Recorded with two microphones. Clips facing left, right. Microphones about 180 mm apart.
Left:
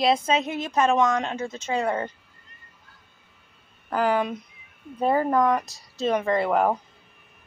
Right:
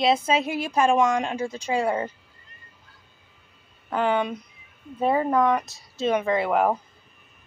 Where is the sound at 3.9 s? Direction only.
Centre (ahead or behind).